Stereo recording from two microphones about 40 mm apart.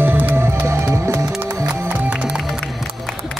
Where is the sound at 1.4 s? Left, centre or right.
Right.